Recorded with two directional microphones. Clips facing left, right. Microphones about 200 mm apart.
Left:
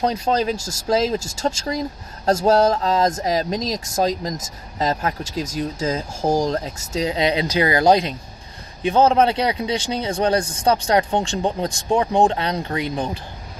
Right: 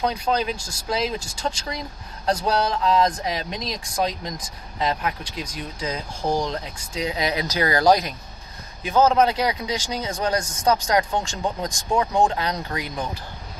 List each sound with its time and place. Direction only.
0.0 s speech: 40° left (ahead or behind)